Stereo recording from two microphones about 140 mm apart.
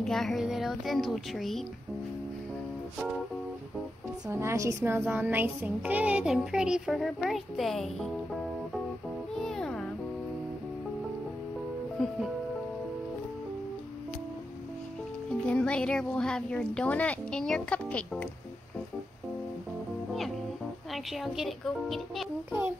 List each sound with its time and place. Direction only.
0.0 s child singing: centre (ahead or behind)
4.3 s speech: 20° right (ahead or behind)
4.8 s child singing: 15° right (ahead or behind); by 8.1 s centre (ahead or behind)
9.3 s music: 5° left (ahead or behind)
12.0 s speech: centre (ahead or behind)
15.4 s speech: 10° left (ahead or behind)
20.9 s child singing: centre (ahead or behind)